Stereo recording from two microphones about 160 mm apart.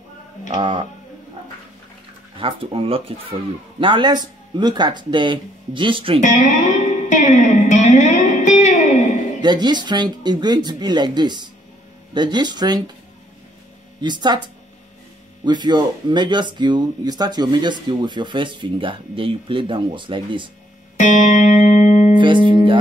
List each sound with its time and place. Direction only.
0.6 s speech: 30° right (ahead or behind)
2.3 s speech: 35° right (ahead or behind)
6.2 s music: 50° left (ahead or behind)
9.4 s speech: 25° right (ahead or behind)
14.0 s speech: 25° right (ahead or behind)
15.4 s speech: 30° right (ahead or behind)
21.0 s music: 50° left (ahead or behind)
22.1 s music: 30° right (ahead or behind)